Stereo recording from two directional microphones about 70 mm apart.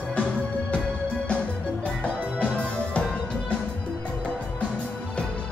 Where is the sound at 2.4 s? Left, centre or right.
Centre.